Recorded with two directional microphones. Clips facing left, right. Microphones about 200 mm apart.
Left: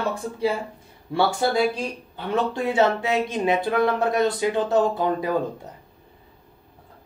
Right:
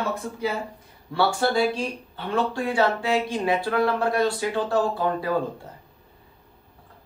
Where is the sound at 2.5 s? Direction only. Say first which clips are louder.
Left 2 dB; 20° left (ahead or behind).